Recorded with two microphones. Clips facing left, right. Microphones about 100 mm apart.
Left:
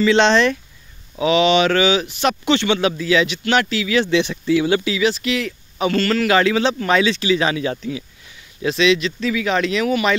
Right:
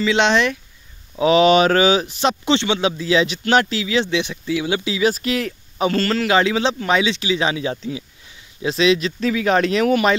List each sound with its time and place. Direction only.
0.0 s speech: 15° right (ahead or behind)
1.1 s speech: 35° right (ahead or behind)
4.1 s speech: 10° right (ahead or behind)
4.8 s speech: 30° right (ahead or behind)
5.1 s speech: 40° right (ahead or behind); by 8.0 s 20° right (ahead or behind)
8.6 s speech: 35° right (ahead or behind)